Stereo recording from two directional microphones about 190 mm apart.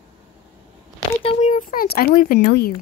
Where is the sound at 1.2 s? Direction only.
40° left (ahead or behind); by 2.7 s 55° left (ahead or behind).